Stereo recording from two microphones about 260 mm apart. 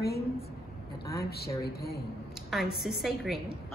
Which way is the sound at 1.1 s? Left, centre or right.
Left.